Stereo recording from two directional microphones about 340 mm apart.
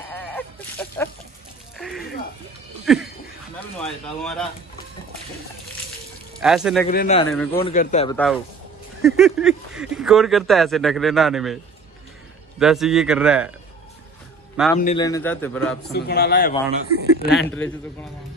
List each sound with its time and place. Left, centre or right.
0.1 s a sound: centre
1.8 s music: centre
2.8 s a sound: centre
3.5 s speech: centre
6.4 s speech: centre
6.9 s a man's voice: left
9.0 s speech: centre
14.6 s speech: centre
15.0 s speech: centre
15.9 s speech: left
17.3 s speech: centre